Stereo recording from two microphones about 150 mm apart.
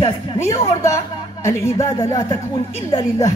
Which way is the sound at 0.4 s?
20° left (ahead or behind).